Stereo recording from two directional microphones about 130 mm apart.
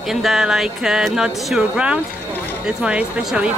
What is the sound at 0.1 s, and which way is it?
Speech, 5° right (ahead or behind).